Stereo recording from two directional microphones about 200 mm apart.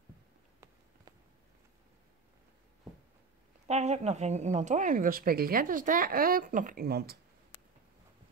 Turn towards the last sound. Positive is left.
turn(degrees=-50)  # may be behind; listen again after turning